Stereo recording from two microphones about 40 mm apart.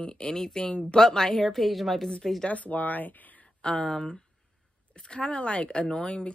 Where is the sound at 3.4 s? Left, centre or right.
Left.